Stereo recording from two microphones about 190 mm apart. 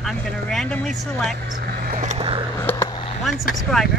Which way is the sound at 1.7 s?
50° right (ahead or behind).